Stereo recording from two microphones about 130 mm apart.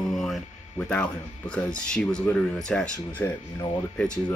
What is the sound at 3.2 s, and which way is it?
Speech, 15° left (ahead or behind).